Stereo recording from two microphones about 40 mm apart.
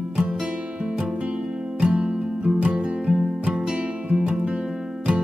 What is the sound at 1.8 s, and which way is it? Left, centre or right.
Music, right.